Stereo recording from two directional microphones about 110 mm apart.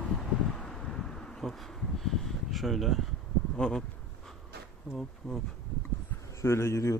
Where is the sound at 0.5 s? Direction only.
5° left (ahead or behind).